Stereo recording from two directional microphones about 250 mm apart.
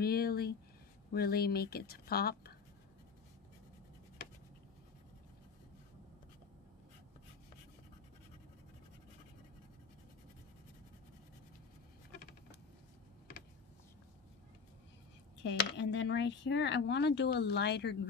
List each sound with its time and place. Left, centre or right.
0.0 s speech: left
15.4 s speech: left